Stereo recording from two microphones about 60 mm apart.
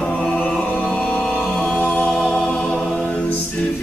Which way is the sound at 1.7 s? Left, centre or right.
Centre.